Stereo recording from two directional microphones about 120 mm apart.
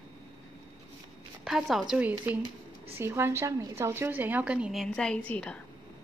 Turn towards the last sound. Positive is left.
turn(degrees=10)  # may be behind; listen again after turning